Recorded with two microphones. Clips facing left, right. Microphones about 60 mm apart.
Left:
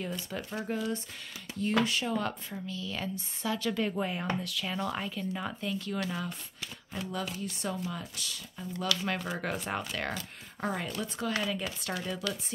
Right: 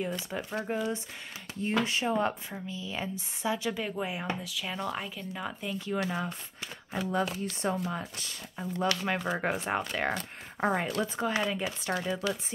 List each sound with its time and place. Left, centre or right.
0.3 s speech: centre
7.1 s speech: right
9.0 s speech: centre
10.6 s speech: right